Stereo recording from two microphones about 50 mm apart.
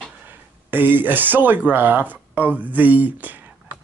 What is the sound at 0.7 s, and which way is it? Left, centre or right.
Speech, right.